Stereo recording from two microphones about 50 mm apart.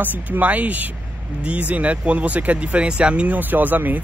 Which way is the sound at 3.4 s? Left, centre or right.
Right.